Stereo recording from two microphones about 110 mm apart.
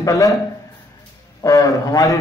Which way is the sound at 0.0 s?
30° left (ahead or behind).